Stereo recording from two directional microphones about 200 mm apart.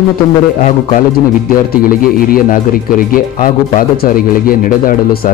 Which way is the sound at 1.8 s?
45° left (ahead or behind).